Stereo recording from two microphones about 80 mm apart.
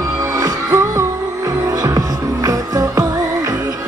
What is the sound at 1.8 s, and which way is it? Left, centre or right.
Music, right.